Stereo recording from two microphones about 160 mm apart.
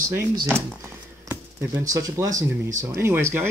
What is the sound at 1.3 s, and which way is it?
Speech, 15° right (ahead or behind).